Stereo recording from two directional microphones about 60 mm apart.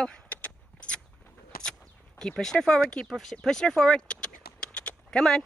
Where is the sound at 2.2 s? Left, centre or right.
Centre.